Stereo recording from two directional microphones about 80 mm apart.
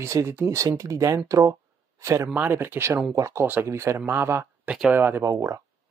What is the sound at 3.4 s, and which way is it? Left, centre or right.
Speech, right.